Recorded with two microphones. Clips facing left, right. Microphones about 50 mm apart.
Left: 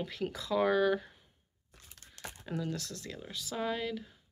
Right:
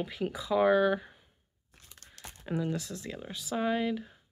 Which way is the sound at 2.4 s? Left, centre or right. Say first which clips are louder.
Right 5 dB; right.